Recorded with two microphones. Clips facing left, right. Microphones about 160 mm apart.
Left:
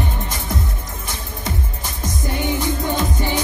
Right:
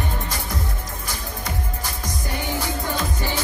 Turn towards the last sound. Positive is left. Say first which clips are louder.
# left 4 dB
turn(degrees=20)  # may be behind; listen again after turning